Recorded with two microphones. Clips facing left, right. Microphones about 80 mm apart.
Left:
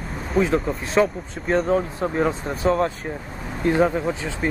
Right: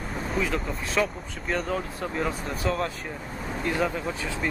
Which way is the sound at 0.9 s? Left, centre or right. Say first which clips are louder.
Left 7 dB; left.